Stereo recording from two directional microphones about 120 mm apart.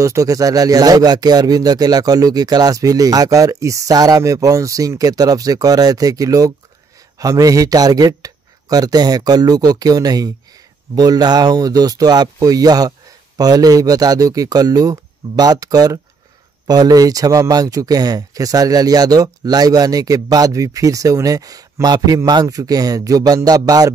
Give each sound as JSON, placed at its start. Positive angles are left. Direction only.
{"t": 0.0, "sound": "speech", "side_deg": -30}